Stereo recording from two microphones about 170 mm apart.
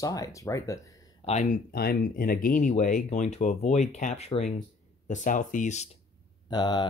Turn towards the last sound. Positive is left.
turn(degrees=25)  # may be behind; listen again after turning